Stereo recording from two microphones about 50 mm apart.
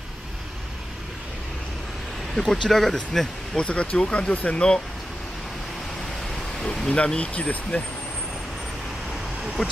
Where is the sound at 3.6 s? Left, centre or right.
Left.